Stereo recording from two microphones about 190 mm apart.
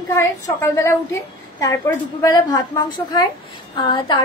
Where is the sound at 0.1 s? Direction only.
15° left (ahead or behind).